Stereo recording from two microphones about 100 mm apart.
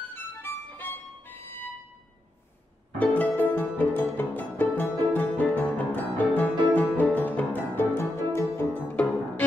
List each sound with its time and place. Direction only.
0.1 s music: 20° left (ahead or behind)
3.0 s music: 15° left (ahead or behind)